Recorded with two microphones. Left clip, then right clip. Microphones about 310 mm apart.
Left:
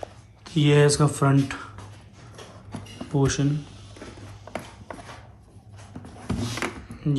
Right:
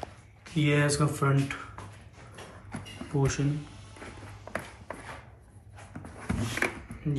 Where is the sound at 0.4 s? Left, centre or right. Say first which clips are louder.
Left 7 dB; centre.